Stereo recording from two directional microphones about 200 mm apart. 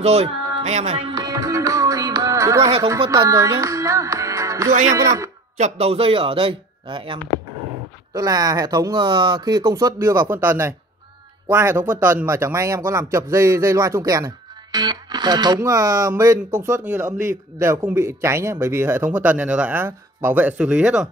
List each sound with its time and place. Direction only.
0.0 s a man's voice: 30° right (ahead or behind)
5.6 s a man's voice: 30° right (ahead or behind); by 21.1 s 5° right (ahead or behind)